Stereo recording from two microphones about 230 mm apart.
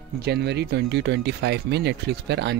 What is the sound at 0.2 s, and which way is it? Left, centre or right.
Speech, right.